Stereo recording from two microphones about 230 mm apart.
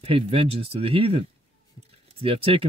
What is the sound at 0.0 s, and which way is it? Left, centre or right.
Speech, right.